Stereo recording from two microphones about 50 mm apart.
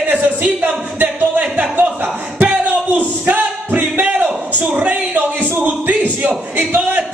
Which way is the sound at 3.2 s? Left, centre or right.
Right.